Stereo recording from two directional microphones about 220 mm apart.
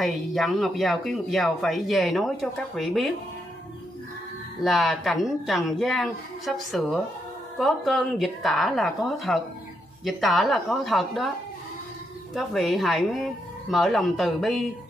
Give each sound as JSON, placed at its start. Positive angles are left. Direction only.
{"t": 0.0, "sound": "speech", "side_deg": 0}
{"t": 4.6, "sound": "speech", "side_deg": 0}
{"t": 12.4, "sound": "speech", "side_deg": 0}